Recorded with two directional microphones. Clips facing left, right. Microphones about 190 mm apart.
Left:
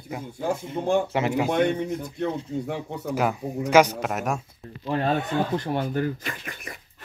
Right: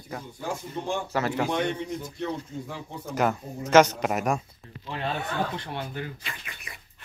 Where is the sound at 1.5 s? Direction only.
55° left (ahead or behind).